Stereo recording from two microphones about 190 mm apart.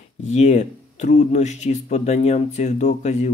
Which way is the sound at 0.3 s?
35° left (ahead or behind).